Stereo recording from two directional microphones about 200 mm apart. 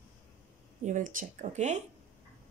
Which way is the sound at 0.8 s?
40° right (ahead or behind).